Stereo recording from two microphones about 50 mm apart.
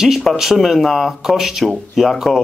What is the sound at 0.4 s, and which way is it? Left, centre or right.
Speech, centre.